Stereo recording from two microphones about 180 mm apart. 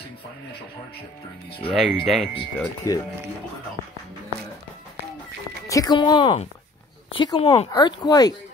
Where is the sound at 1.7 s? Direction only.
Centre (ahead or behind).